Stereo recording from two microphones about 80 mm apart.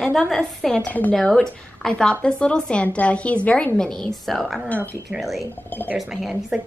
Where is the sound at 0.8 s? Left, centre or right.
Left.